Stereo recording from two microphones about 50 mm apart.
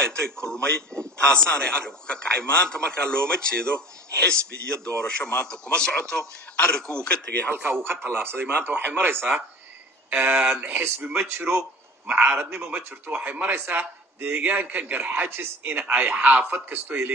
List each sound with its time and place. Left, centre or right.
0.0 s a man's voice: centre
7.5 s a man's voice: right
10.1 s a man's voice: right
10.7 s a man's voice: right
12.1 s a man's voice: right